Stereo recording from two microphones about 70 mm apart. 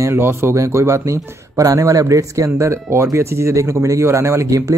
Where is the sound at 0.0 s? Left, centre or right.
Right.